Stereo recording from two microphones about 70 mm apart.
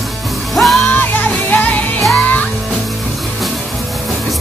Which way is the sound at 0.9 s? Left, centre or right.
Left.